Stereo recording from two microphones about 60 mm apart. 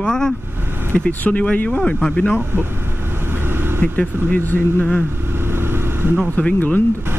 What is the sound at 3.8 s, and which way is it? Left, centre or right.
Speech, left.